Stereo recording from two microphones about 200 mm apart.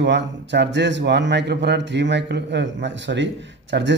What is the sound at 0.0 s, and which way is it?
A man's voice, 60° right (ahead or behind).